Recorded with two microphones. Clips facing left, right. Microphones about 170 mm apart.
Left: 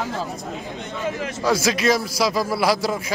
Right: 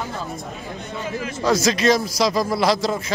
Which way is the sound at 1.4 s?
5° left (ahead or behind).